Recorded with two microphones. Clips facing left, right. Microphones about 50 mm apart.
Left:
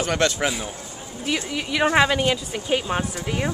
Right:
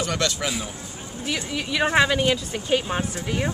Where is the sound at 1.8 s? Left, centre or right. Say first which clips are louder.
Left 1 dB; centre.